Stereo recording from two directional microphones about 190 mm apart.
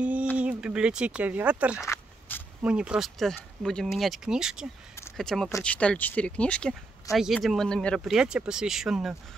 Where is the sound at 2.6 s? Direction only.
5° right (ahead or behind).